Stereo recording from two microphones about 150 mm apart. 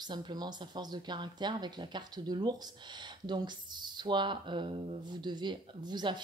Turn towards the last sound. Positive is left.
turn(degrees=-30)  # may be behind; listen again after turning